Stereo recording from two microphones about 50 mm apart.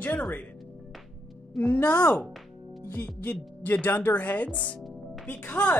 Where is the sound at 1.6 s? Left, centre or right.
Left.